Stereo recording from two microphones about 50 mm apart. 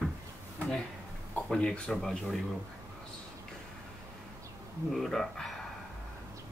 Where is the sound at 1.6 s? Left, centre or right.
Centre.